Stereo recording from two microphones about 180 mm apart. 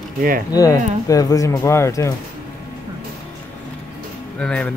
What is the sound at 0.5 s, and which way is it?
Speech, 20° left (ahead or behind).